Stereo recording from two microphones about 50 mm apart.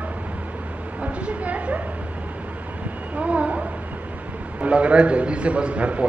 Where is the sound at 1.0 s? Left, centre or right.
Right.